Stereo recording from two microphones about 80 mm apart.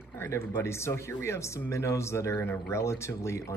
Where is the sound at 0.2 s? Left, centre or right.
Left.